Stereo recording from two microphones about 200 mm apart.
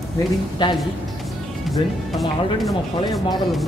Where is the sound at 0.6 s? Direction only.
20° left (ahead or behind).